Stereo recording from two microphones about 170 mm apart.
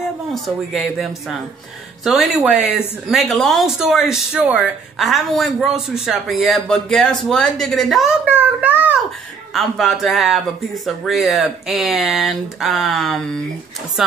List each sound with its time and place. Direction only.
0.3 s speech: centre (ahead or behind)